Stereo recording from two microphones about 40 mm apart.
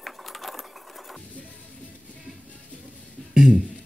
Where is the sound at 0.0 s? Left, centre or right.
Centre.